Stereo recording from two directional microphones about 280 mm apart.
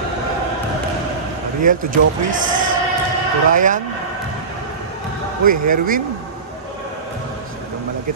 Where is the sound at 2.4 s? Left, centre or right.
Right.